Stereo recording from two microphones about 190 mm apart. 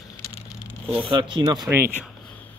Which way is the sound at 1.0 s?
25° right (ahead or behind).